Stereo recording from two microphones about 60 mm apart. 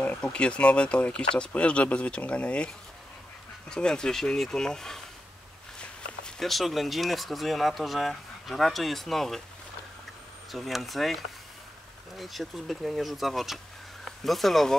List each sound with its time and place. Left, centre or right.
0.0 s speech: centre
6.2 s speech: centre
10.5 s speech: centre